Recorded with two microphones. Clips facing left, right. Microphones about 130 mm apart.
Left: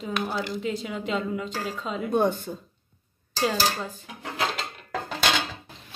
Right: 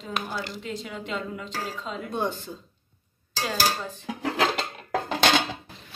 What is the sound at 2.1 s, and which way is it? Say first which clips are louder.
Speech: left 7 dB; 50° left (ahead or behind).